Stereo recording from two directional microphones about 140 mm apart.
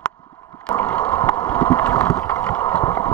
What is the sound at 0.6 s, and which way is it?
Boat, 10° left (ahead or behind).